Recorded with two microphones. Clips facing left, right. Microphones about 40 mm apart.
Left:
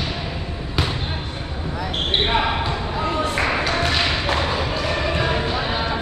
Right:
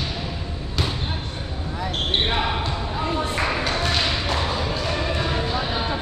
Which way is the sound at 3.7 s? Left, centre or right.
Centre.